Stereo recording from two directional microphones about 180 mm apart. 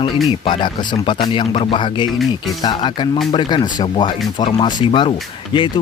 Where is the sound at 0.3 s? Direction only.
25° left (ahead or behind).